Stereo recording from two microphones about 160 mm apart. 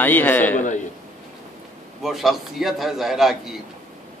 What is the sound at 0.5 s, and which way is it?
Speech, 50° left (ahead or behind).